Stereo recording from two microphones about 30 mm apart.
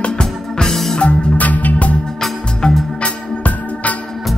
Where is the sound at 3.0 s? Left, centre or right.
Left.